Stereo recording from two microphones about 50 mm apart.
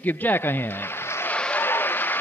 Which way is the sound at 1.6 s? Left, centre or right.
Left.